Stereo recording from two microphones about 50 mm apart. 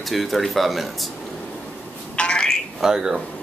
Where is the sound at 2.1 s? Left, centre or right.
Centre.